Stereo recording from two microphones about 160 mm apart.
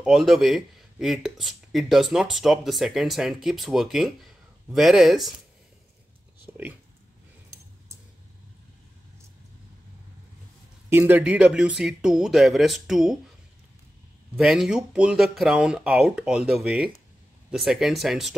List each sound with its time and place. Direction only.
0.0 s speech: centre (ahead or behind)
10.9 s speech: 15° right (ahead or behind)
14.4 s speech: centre (ahead or behind)